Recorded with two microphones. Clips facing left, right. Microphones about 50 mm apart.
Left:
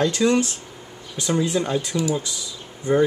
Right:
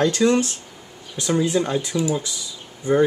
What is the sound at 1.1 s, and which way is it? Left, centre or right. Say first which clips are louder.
Speech: right 2 dB; centre.